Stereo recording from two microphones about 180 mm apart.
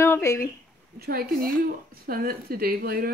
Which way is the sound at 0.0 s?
15° left (ahead or behind).